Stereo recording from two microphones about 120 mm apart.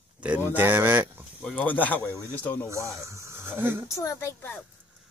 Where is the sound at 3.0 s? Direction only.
25° right (ahead or behind).